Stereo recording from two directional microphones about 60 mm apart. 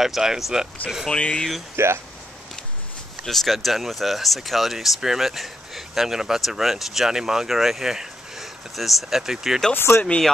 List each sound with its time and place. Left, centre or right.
0.0 s speech: centre
1.1 s speech: centre
1.8 s speech: right
3.3 s speech: centre
9.8 s speech: left